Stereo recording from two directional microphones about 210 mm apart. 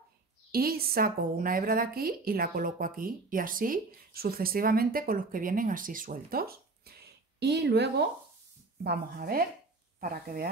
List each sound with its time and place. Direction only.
0.5 s a woman's voice: 45° right (ahead or behind)